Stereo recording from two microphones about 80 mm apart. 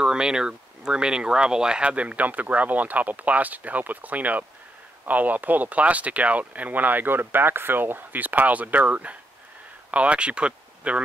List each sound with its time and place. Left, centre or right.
0.0 s speech: centre